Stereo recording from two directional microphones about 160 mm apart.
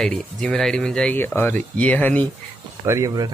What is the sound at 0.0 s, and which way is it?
Speech, 5° left (ahead or behind).